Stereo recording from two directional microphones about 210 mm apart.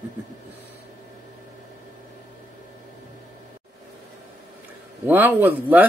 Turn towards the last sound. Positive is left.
turn(degrees=-10)  # may be behind; listen again after turning